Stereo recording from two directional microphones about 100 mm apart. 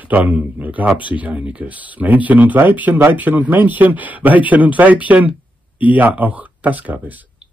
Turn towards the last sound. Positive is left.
turn(degrees=-15)  # may be behind; listen again after turning